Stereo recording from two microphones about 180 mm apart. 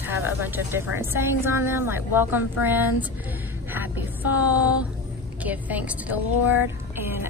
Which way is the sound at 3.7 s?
10° right (ahead or behind).